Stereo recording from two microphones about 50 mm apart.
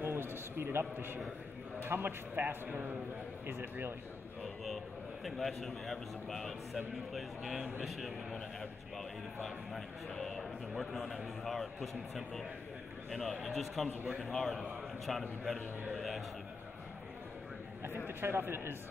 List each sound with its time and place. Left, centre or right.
0.0 s a sound: right
1.9 s a man's voice: right
3.4 s speech: right
4.6 s a man's voice: centre
14.0 s a man's voice: centre
14.3 s a man's voice: centre
18.0 s speech: right